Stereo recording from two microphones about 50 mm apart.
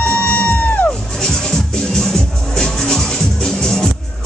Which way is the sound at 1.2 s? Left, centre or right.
Centre.